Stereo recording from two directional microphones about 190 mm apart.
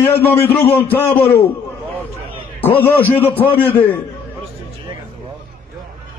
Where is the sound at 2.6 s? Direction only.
10° left (ahead or behind).